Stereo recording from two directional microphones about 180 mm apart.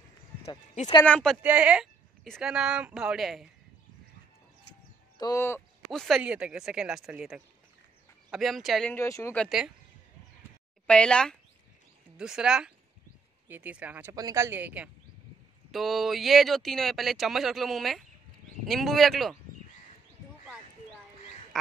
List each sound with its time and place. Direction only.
1.0 s speech: 5° left (ahead or behind)
1.4 s speech: 10° right (ahead or behind)
5.2 s speech: 15° left (ahead or behind)
5.9 s speech: centre (ahead or behind)
8.9 s speech: 15° left (ahead or behind)
9.4 s speech: centre (ahead or behind)
10.9 s speech: 5° left (ahead or behind)